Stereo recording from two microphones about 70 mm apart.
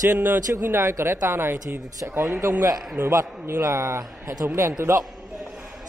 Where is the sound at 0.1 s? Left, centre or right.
Right.